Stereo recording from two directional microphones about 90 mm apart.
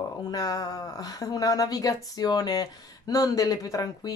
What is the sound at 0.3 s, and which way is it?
Speech, 45° left (ahead or behind).